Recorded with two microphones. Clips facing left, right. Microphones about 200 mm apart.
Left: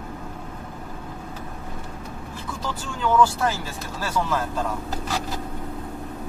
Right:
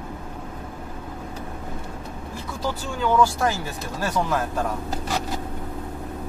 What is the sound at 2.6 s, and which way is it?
Speech, 10° right (ahead or behind).